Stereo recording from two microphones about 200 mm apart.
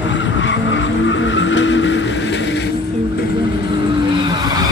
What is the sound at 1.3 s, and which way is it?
Vehicle, 65° left (ahead or behind).